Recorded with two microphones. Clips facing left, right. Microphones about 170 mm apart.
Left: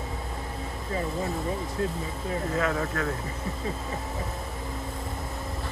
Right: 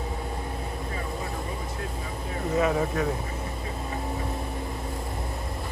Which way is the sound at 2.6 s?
15° right (ahead or behind).